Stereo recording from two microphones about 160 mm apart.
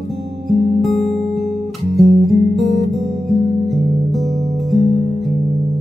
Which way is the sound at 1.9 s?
Centre (ahead or behind).